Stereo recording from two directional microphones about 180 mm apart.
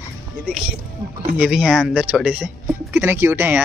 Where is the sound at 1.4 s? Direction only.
Centre (ahead or behind).